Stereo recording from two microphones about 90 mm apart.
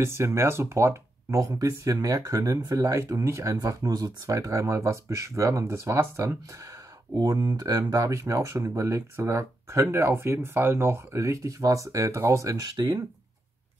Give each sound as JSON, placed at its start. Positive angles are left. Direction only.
{"t": 0.0, "sound": "speech", "side_deg": -30}
{"t": 7.2, "sound": "speech", "side_deg": -45}